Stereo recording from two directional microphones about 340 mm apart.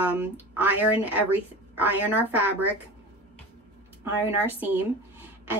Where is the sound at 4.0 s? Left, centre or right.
Centre.